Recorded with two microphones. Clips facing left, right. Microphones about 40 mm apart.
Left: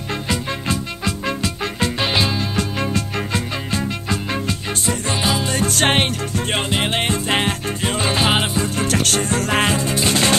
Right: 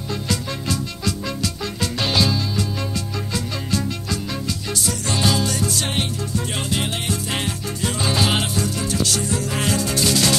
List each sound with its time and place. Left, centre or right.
0.3 s music: left
5.5 s music: left
6.7 s music: left
8.3 s music: left
8.8 s music: left
9.7 s music: left